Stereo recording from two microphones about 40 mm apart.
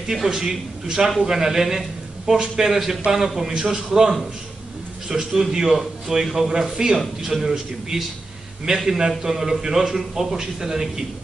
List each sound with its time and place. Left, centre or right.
0.1 s a man's voice: centre